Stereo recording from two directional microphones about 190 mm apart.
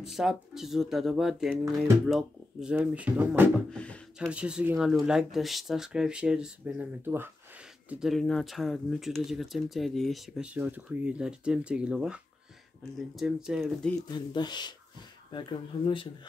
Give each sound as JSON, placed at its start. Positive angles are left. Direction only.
{"t": 0.0, "sound": "speech", "side_deg": 0}
{"t": 3.7, "sound": "speech", "side_deg": 5}
{"t": 4.3, "sound": "speech", "side_deg": -5}
{"t": 14.1, "sound": "speech", "side_deg": 25}